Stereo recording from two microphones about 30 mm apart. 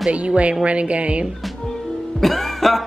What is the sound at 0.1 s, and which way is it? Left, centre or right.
A woman's voice, right.